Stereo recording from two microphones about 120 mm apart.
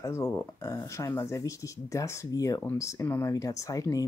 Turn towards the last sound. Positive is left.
turn(degrees=30)  # may be behind; listen again after turning